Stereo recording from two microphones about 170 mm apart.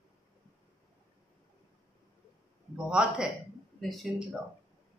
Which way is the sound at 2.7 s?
5° right (ahead or behind).